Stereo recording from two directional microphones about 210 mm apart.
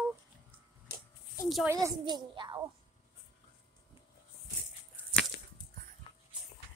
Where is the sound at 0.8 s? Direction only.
45° left (ahead or behind).